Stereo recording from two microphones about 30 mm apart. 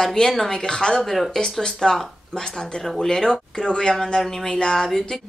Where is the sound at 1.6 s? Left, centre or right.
Centre.